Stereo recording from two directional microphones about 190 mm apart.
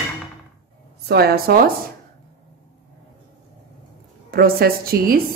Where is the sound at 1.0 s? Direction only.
55° right (ahead or behind).